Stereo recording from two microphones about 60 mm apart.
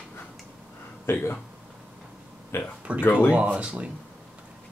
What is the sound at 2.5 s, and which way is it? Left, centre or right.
Speech, left.